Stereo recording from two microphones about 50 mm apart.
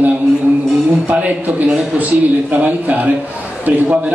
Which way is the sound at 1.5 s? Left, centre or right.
Right.